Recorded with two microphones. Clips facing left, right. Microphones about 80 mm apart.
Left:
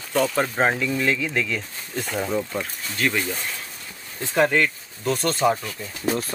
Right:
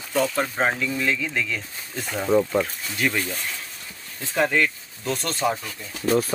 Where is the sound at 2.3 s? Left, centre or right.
Centre.